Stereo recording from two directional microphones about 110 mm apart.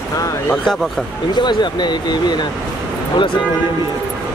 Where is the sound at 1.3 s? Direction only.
40° left (ahead or behind).